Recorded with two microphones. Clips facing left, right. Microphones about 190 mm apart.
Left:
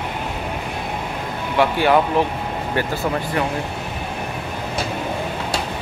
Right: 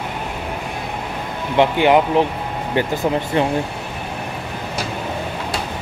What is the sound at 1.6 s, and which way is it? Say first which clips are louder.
Speech: right 2 dB; 20° right (ahead or behind).